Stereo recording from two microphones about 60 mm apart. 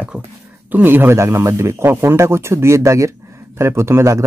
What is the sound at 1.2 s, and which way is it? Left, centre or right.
Speech, right.